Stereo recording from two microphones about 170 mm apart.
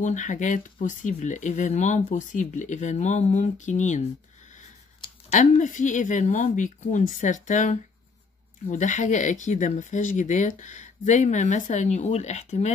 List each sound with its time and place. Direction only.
0.0 s speech: 45° left (ahead or behind)
5.3 s speech: 45° left (ahead or behind)